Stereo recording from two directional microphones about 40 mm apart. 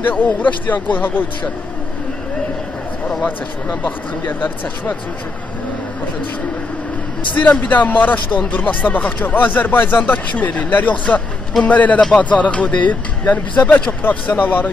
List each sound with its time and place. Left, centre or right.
0.1 s speech: left
4.3 s speech: left
7.4 s speech: left
10.4 s speech: left
14.0 s speech: left